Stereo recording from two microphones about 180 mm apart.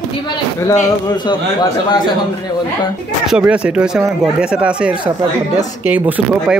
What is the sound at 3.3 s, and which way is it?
Speech, 5° right (ahead or behind).